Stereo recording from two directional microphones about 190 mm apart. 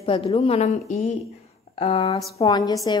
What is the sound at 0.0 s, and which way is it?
A woman's voice, 30° left (ahead or behind).